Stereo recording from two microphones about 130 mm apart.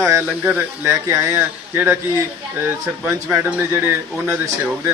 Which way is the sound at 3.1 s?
15° right (ahead or behind).